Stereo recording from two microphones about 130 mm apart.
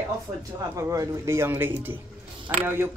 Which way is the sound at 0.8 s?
25° right (ahead or behind).